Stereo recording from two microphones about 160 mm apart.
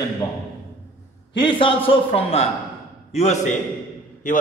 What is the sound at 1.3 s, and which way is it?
A man's voice, 30° left (ahead or behind).